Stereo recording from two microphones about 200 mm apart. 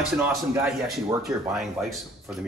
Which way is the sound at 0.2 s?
Centre (ahead or behind).